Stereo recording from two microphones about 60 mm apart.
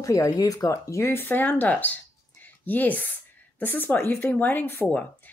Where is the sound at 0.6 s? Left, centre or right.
Left.